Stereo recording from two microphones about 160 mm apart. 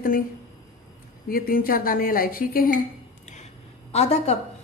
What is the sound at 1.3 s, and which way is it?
A woman's voice, 65° left (ahead or behind).